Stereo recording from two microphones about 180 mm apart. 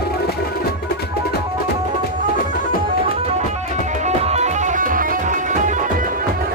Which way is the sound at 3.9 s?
40° right (ahead or behind).